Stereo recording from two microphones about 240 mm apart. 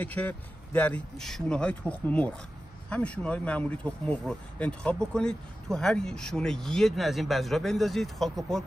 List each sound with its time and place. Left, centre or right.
0.0 s speech: centre